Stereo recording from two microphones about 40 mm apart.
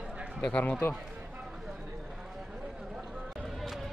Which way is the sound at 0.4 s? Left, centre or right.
Left.